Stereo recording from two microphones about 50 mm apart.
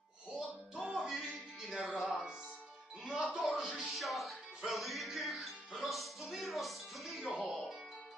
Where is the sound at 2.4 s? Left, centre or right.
Left.